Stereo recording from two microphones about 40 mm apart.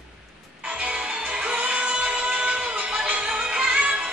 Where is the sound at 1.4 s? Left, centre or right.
Right.